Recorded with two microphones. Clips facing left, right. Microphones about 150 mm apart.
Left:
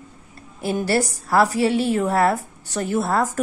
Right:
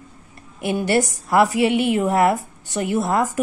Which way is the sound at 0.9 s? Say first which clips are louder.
Right 2 dB; 20° right (ahead or behind).